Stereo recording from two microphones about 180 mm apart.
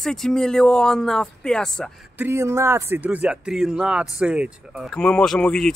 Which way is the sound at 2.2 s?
15° right (ahead or behind).